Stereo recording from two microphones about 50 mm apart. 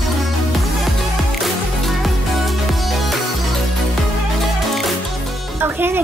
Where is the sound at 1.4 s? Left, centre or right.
Centre.